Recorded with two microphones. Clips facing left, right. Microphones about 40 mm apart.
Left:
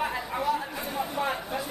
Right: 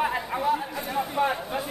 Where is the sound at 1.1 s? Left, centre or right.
Centre.